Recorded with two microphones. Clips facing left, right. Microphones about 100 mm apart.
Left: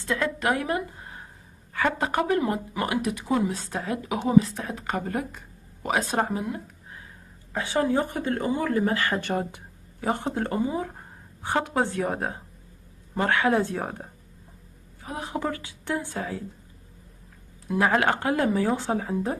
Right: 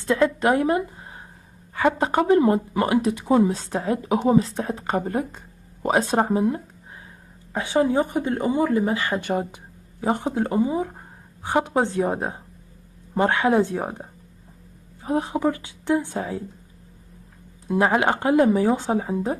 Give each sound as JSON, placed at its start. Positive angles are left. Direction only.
{"t": 0.0, "sound": "speech", "side_deg": -25}
{"t": 7.5, "sound": "a woman's voice", "side_deg": -20}
{"t": 15.0, "sound": "speech", "side_deg": -30}
{"t": 15.3, "sound": "speech", "side_deg": -15}
{"t": 17.6, "sound": "speech", "side_deg": -25}